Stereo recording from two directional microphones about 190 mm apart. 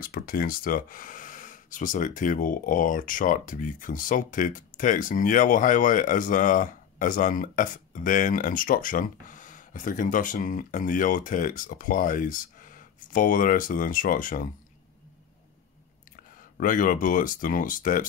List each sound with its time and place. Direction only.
0.0 s speech: 50° left (ahead or behind)
16.5 s speech: 45° left (ahead or behind)